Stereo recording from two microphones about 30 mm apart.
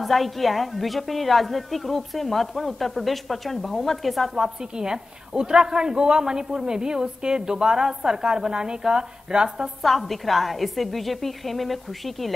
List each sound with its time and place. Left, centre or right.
0.0 s a woman's voice: centre
4.4 s a woman's voice: right
9.8 s a woman's voice: centre